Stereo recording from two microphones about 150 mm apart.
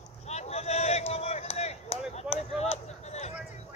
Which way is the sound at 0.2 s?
45° left (ahead or behind).